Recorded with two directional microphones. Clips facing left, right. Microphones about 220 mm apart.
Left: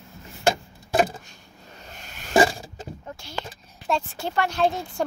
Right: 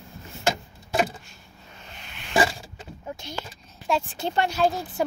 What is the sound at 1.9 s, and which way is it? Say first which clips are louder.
Rub: left 4 dB; 45° left (ahead or behind).